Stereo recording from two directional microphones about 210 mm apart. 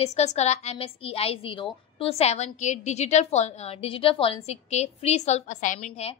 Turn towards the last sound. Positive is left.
turn(degrees=35)  # may be behind; listen again after turning